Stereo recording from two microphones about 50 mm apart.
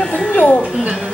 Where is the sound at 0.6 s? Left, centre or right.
Right.